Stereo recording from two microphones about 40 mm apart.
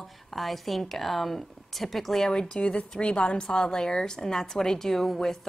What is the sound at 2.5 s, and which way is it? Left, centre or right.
A woman's voice, left.